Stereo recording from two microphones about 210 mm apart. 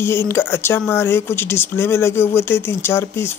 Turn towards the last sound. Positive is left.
turn(degrees=10)  # may be behind; listen again after turning